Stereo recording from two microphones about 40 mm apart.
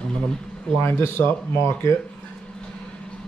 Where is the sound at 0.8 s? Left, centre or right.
Left.